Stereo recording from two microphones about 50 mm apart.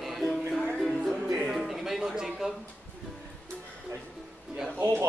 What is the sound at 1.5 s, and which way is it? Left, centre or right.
Speech, centre.